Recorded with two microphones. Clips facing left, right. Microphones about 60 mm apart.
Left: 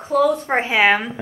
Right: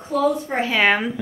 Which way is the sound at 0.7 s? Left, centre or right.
Centre.